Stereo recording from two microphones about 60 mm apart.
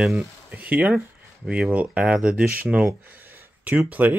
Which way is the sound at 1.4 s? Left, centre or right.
Centre.